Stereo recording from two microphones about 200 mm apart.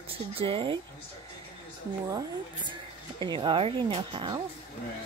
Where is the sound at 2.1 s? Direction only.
25° right (ahead or behind).